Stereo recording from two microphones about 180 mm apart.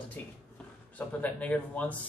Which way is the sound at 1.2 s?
10° left (ahead or behind).